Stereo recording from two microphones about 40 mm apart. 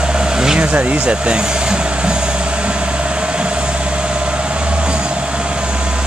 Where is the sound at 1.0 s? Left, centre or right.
Right.